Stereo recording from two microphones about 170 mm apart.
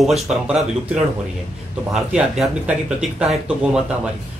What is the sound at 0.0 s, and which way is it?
Speech, centre (ahead or behind).